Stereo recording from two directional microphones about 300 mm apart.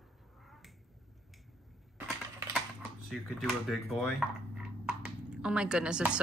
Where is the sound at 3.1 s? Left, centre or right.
Centre.